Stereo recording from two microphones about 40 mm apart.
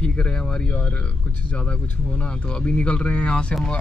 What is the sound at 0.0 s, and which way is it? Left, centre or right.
Speech, left.